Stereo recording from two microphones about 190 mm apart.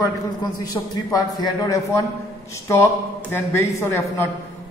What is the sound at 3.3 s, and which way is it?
Speech, 10° left (ahead or behind).